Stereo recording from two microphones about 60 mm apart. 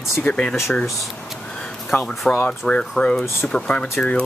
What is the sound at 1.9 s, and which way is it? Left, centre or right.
Speech, left.